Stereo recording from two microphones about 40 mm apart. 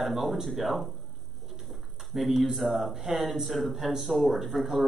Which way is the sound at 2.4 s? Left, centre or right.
Centre.